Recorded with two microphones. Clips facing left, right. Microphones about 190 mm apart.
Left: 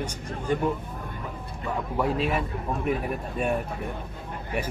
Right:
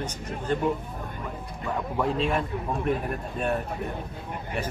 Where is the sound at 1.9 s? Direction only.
5° left (ahead or behind).